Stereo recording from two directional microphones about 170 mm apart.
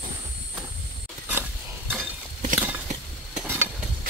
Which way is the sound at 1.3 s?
10° right (ahead or behind).